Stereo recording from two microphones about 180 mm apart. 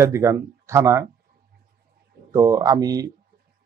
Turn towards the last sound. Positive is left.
turn(degrees=-20)  # may be behind; listen again after turning